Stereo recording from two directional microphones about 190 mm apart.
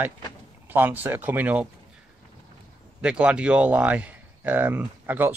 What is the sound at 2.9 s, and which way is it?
Speech, 5° right (ahead or behind).